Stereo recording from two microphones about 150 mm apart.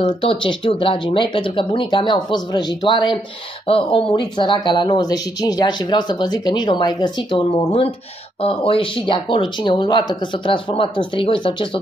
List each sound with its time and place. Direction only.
0.0 s speech: 35° left (ahead or behind)